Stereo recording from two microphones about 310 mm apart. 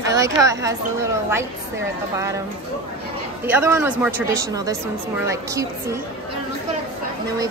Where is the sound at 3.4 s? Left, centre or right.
Centre.